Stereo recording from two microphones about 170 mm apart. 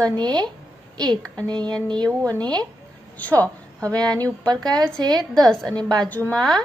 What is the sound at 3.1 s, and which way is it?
Speech, 10° left (ahead or behind).